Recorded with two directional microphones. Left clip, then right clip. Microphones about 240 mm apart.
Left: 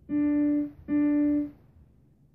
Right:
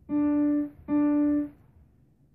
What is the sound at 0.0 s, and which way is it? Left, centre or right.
Music, right.